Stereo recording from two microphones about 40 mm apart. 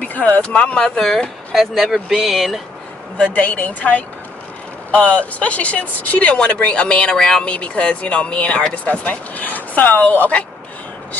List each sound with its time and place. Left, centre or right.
0.4 s speech: left
0.9 s speech: centre
3.3 s speech: left; by 7.4 s centre
7.4 s speech: left